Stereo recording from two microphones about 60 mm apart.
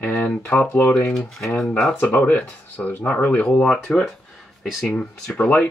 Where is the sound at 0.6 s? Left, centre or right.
Left.